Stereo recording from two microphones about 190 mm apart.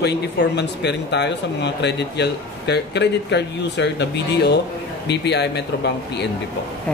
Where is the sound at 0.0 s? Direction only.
65° left (ahead or behind).